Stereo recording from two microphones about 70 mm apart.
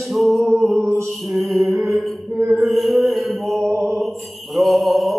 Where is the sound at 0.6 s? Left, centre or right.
Right.